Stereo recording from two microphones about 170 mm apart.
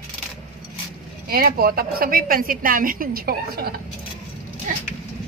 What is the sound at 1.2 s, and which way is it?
Speech, 60° right (ahead or behind).